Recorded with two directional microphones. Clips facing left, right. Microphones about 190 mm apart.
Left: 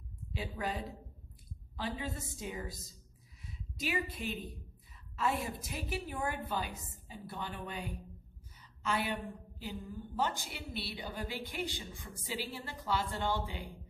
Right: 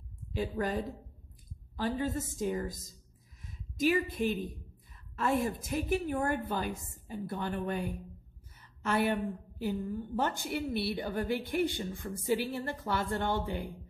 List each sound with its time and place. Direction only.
0.3 s a woman's voice: 45° right (ahead or behind)